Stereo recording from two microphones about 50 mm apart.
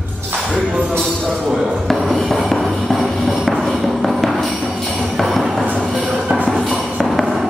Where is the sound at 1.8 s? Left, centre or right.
Centre.